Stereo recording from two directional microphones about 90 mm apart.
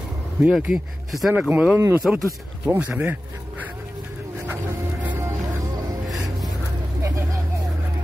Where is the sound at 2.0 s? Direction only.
5° left (ahead or behind).